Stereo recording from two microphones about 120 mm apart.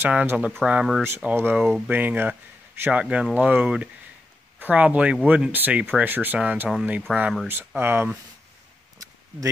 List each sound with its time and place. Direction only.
0.0 s speech: 10° right (ahead or behind)
1.0 s speech: 20° right (ahead or behind)
8.9 s a sound: 30° right (ahead or behind)